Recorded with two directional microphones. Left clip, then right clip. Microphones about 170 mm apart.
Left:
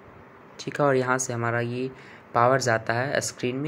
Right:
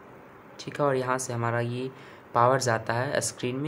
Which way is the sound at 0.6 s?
20° left (ahead or behind).